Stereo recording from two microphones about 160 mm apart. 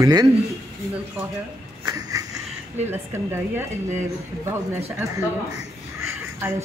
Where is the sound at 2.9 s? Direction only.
15° right (ahead or behind).